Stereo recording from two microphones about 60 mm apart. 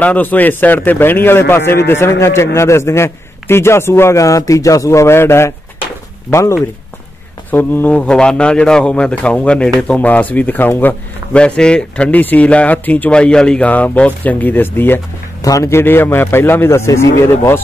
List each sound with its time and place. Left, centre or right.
0.0 s a man's voice: left
7.5 s speech: left
7.9 s a man's voice: centre
11.3 s a man's voice: centre
13.1 s a man's voice: centre
13.7 s speech: left
15.4 s a man's voice: left
15.7 s a man's voice: left